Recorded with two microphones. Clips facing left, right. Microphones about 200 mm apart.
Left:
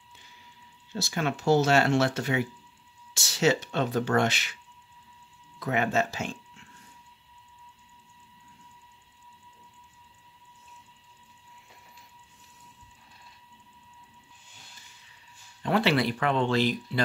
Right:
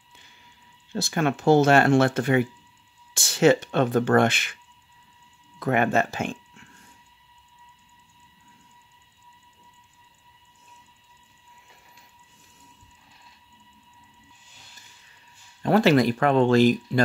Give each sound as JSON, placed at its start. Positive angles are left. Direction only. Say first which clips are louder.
{"t": 0.9, "sound": "speech", "louder": "right 5 dB", "side_deg": -50}
{"t": 5.6, "sound": "speech", "louder": "right 4 dB", "side_deg": -55}
{"t": 15.6, "sound": "speech", "louder": "right 6 dB", "side_deg": -45}